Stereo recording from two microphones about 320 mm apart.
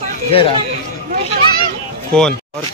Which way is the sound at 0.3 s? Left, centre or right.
Centre.